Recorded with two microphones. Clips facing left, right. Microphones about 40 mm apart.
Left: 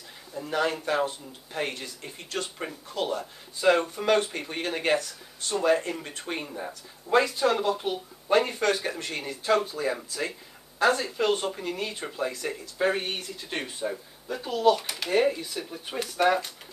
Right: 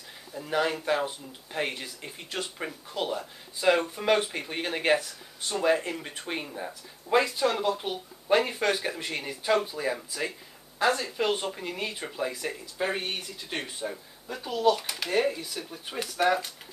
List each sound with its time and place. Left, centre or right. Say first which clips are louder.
0.3 s speech: even; centre
10.9 s speech: left 2 dB; centre
11.1 s speech: left 2 dB; centre